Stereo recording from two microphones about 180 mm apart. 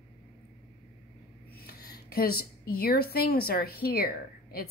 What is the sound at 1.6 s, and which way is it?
A woman's voice, 60° left (ahead or behind).